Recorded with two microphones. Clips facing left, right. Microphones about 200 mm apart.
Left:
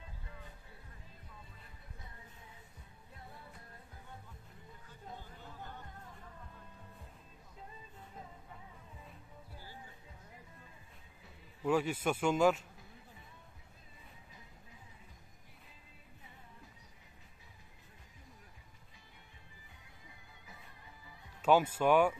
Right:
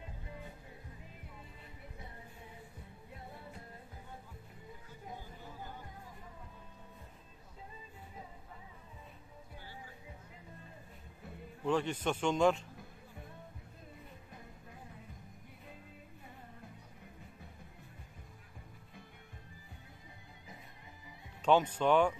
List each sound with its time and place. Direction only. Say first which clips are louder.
5.0 s chatter: right 1 dB; 15° right (ahead or behind)
11.6 s a man's voice: left 1 dB; 10° left (ahead or behind)
14.3 s music: right 6 dB; 55° right (ahead or behind)
21.4 s speech: even; 5° left (ahead or behind)